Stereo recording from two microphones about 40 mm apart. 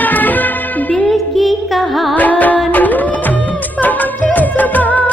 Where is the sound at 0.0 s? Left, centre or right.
Left.